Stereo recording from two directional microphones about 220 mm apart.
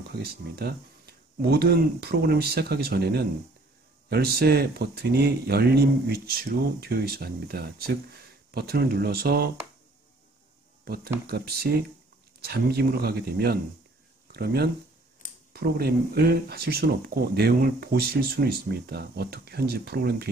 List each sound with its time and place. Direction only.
0.2 s speech: 45° right (ahead or behind)
11.2 s speech: 45° right (ahead or behind)